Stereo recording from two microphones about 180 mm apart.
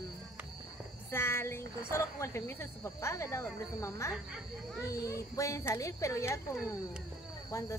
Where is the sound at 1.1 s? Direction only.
15° left (ahead or behind).